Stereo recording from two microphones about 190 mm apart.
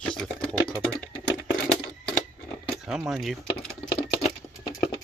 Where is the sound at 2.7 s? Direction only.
Centre (ahead or behind).